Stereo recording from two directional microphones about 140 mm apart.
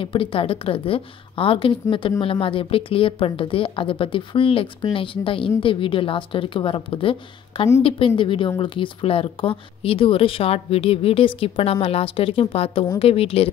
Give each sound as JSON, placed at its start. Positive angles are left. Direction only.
{"t": 0.0, "sound": "a woman's voice", "side_deg": 40}